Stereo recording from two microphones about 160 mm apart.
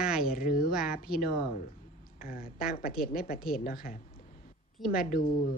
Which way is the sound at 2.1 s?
65° left (ahead or behind).